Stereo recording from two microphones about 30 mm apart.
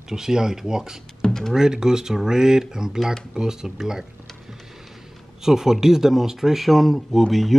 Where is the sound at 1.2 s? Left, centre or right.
Left.